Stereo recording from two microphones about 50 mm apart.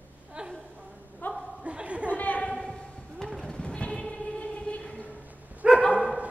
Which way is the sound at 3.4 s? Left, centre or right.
Centre.